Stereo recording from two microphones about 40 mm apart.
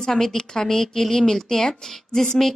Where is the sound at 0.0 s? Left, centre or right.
Centre.